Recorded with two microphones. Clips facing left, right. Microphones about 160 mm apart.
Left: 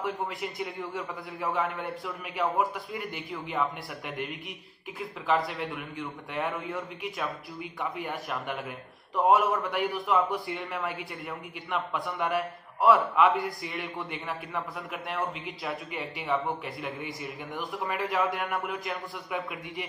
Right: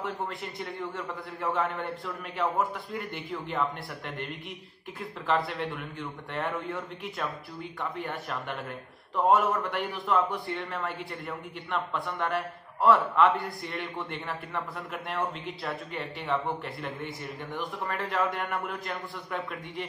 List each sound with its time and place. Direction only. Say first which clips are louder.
0.0 s a man's voice: left 2 dB; 5° left (ahead or behind)